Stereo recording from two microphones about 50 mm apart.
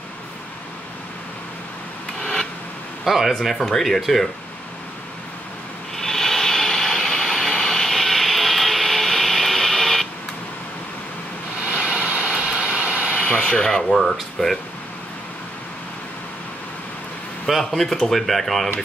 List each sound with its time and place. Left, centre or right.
2.1 s a sound: centre
3.1 s speech: centre
5.9 s vehicle: centre
11.6 s vehicle: right
13.1 s a sound: left
13.4 s rub: centre
14.4 s speech: centre
17.5 s speech: centre